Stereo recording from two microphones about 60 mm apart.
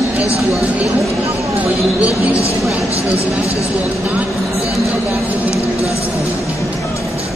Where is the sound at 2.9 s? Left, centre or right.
Left.